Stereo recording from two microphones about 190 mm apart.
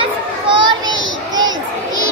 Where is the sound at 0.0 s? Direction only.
25° right (ahead or behind).